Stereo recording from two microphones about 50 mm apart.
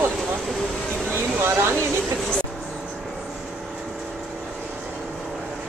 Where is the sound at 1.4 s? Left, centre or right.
Right.